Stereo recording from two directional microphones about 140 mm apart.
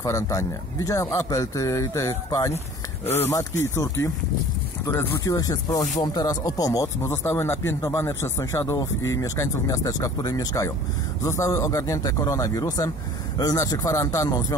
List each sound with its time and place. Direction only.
0.0 s speech: 20° left (ahead or behind)